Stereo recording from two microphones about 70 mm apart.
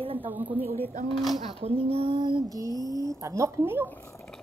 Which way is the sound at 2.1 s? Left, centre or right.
Right.